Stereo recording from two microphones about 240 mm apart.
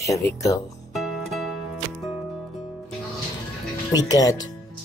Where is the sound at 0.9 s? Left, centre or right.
Centre.